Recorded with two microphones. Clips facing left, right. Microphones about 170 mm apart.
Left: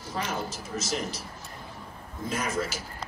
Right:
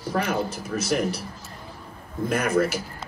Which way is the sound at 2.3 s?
60° right (ahead or behind).